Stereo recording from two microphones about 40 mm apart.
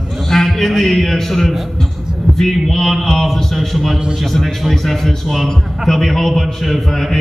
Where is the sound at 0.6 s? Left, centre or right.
Centre.